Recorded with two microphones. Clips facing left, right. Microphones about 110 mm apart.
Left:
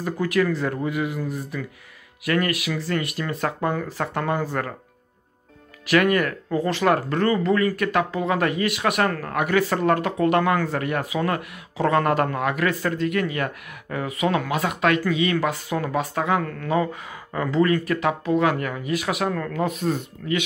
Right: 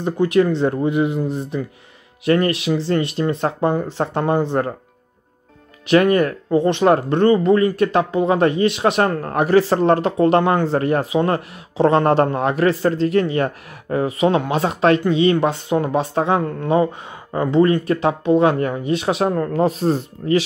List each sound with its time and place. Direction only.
0.0 s speech: 25° right (ahead or behind)
5.9 s speech: 25° right (ahead or behind)